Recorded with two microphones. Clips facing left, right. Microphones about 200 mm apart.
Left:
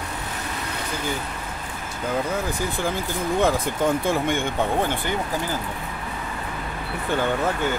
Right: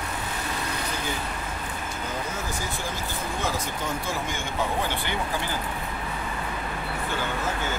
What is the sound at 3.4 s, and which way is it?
Speech, 55° left (ahead or behind).